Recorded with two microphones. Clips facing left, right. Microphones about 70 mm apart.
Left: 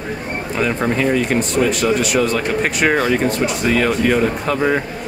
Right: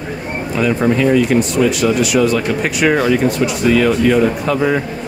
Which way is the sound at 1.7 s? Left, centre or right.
Left.